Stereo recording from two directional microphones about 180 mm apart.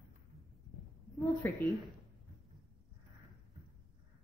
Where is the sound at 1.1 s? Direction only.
10° left (ahead or behind).